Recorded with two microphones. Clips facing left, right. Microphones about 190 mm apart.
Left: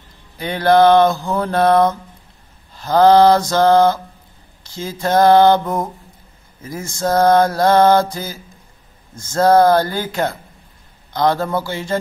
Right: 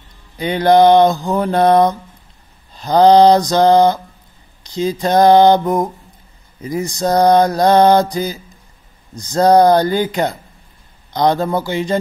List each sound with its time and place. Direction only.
0.4 s mantra: 15° right (ahead or behind)